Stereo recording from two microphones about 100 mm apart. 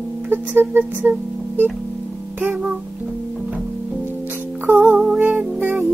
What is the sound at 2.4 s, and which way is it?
Music, 10° right (ahead or behind).